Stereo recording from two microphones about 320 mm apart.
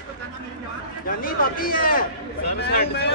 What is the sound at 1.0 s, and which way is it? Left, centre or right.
A man's voice, left.